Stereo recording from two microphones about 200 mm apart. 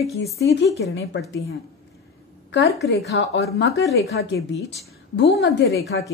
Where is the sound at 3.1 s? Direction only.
65° left (ahead or behind).